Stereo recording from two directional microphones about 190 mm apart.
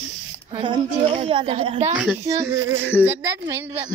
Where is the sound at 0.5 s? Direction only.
25° right (ahead or behind).